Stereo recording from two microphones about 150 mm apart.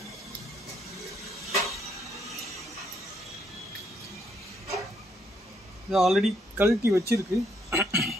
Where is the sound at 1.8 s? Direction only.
Centre (ahead or behind).